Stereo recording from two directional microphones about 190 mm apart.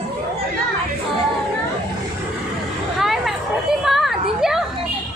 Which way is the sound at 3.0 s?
Centre (ahead or behind).